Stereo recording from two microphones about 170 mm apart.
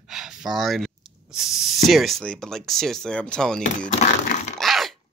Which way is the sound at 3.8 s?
45° left (ahead or behind).